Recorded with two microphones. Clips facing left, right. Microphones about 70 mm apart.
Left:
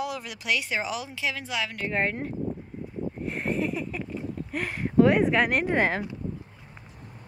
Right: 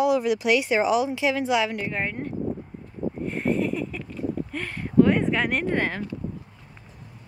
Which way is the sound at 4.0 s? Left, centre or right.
Centre.